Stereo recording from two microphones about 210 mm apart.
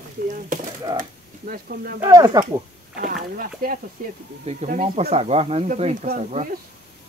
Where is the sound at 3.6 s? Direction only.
45° right (ahead or behind).